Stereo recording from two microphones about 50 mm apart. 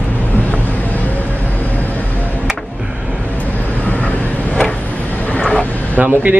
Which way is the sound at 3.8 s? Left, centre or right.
Left.